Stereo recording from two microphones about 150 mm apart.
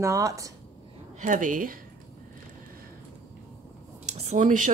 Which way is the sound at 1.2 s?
60° right (ahead or behind).